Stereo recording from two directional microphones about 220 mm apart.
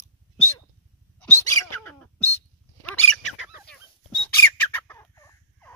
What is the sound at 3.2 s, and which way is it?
Fowl, 5° left (ahead or behind).